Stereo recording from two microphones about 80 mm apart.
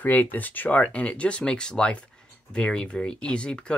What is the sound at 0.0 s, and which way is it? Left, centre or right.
Speech, left.